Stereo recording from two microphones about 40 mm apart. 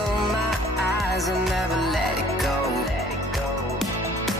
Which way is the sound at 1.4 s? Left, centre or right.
Centre.